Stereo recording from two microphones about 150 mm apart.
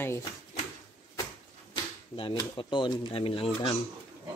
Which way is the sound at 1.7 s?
30° left (ahead or behind).